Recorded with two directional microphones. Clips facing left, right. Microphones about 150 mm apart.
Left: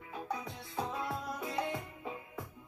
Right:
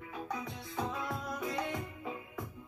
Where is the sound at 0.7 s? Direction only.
30° left (ahead or behind).